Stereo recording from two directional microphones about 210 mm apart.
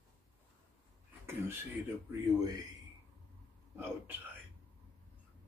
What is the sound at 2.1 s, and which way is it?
Speech, 15° right (ahead or behind).